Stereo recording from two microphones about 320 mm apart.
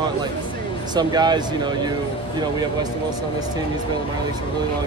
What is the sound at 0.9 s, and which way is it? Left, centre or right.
Speech, centre.